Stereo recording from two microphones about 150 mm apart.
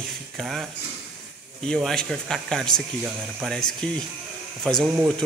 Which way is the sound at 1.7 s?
5° left (ahead or behind).